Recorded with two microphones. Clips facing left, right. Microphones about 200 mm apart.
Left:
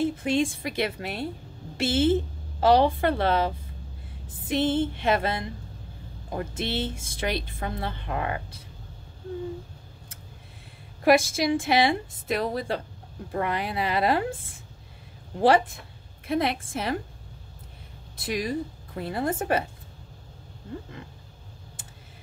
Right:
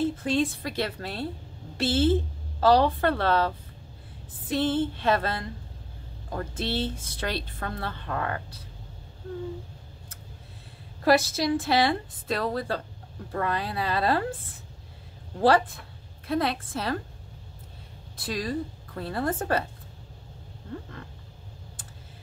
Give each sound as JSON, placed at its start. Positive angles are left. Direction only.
{"t": 0.0, "sound": "a woman's voice", "side_deg": 15}
{"t": 2.6, "sound": "a sound", "side_deg": 20}
{"t": 6.3, "sound": "a woman's voice", "side_deg": 15}
{"t": 11.1, "sound": "a woman's voice", "side_deg": 15}
{"t": 16.3, "sound": "a woman's voice", "side_deg": 20}
{"t": 18.3, "sound": "a woman's voice", "side_deg": 15}